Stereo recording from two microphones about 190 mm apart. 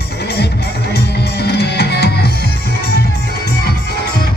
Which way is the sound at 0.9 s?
60° left (ahead or behind).